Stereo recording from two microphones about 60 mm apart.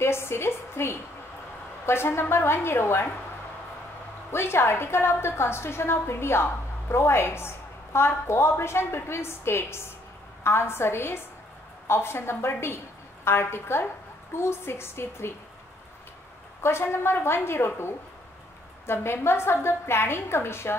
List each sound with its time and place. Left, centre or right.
0.0 s a sound: left
1.9 s a woman's voice: left
4.3 s a woman's voice: left
16.6 s a woman's voice: left